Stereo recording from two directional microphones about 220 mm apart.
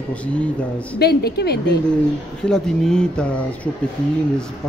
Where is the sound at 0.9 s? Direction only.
45° left (ahead or behind).